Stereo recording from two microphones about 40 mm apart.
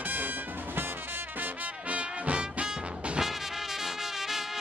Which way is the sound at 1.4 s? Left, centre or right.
Right.